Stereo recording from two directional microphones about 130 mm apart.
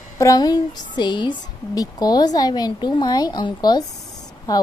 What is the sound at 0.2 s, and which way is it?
Speech, 30° left (ahead or behind).